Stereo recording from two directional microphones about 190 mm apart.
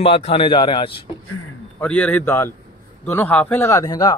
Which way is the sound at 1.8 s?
5° left (ahead or behind).